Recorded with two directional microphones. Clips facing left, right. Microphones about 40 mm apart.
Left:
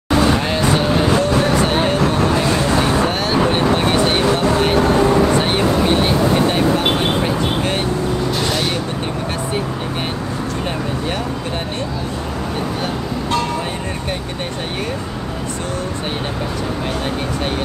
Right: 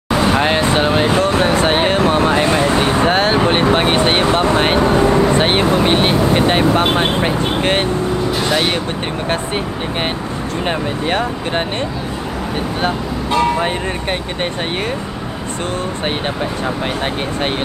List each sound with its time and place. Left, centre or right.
0.1 s vehicle: centre
0.4 s vehicle: right
5.4 s speech: right
13.6 s speech: right